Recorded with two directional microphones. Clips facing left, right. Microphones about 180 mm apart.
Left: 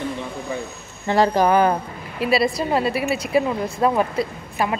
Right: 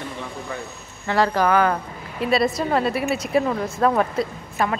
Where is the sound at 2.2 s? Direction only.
5° left (ahead or behind).